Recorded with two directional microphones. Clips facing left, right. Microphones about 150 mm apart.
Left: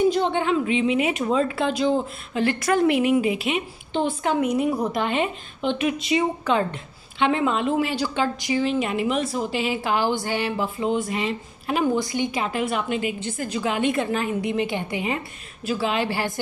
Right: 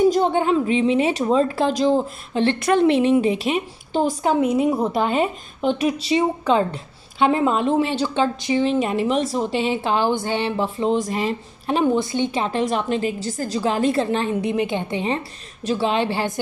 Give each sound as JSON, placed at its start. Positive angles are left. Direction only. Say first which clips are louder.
{"t": 0.0, "sound": "a woman's voice", "louder": "right 3 dB", "side_deg": -40}
{"t": 8.7, "sound": "a woman's voice", "louder": "right 3 dB", "side_deg": -35}
{"t": 14.5, "sound": "a woman's voice", "louder": "right 3 dB", "side_deg": -20}